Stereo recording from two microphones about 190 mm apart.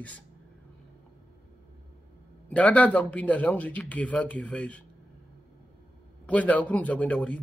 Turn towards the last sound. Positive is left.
turn(degrees=5)  # may be behind; listen again after turning